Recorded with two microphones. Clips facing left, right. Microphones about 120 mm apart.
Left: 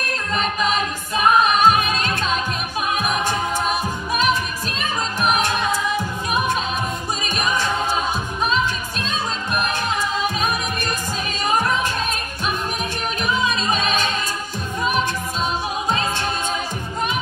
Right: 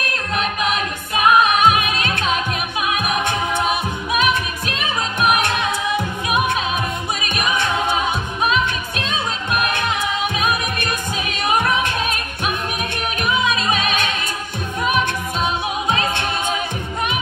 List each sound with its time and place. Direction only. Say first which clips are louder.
0.3 s music: even; 55° right (ahead or behind)
4.1 s music: right 1 dB; 60° right (ahead or behind)
7.2 s a capella: even; 60° right (ahead or behind)
8.5 s music: right 2 dB; 60° right (ahead or behind)